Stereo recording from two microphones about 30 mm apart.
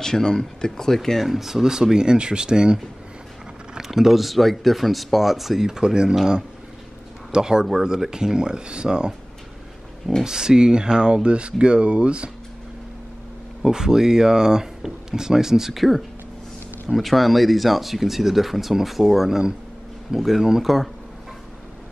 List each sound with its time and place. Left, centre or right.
0.0 s speech: centre
1.2 s speech: centre
1.6 s speech: centre
3.7 s speech: centre
5.7 s speech: right
7.3 s speech: right
10.2 s speech: right
13.7 s speech: right
15.7 s speech: centre